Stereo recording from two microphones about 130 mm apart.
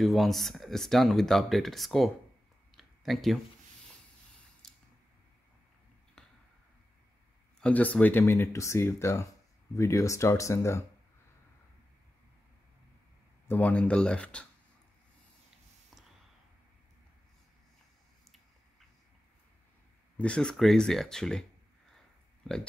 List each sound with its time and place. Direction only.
0.0 s speech: centre (ahead or behind)
2.7 s a sound: centre (ahead or behind)
4.6 s a sound: 5° left (ahead or behind)
7.6 s speech: 10° left (ahead or behind)
13.5 s speech: 10° left (ahead or behind)
20.2 s speech: 10° left (ahead or behind)